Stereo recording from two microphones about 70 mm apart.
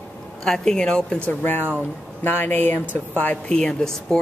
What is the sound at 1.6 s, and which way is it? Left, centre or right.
Speech, right.